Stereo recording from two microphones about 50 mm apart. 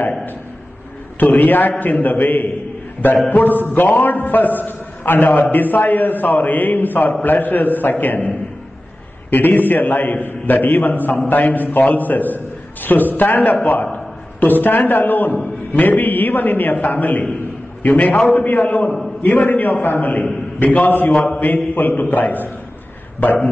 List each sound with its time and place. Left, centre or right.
0.0 s a sound: left
1.2 s a man's voice: left
17.8 s a man's voice: left
18.3 s a man's voice: left